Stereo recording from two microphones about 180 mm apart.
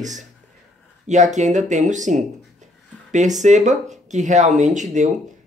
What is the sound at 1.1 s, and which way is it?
Speech, 40° right (ahead or behind).